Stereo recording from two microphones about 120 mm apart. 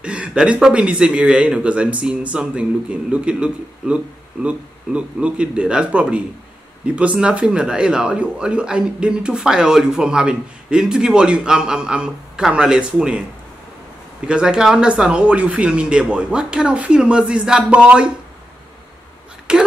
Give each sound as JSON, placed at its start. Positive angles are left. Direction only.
{"t": 0.0, "sound": "a man's voice", "side_deg": -10}
{"t": 14.2, "sound": "a man's voice", "side_deg": -5}
{"t": 19.5, "sound": "a man's voice", "side_deg": -5}